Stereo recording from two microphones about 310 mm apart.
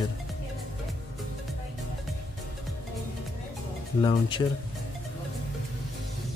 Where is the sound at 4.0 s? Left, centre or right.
Centre.